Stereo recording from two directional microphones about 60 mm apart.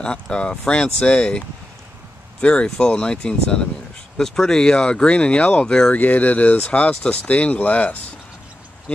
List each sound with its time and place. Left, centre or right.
0.0 s speech: centre
2.4 s speech: centre
5.9 s speech: left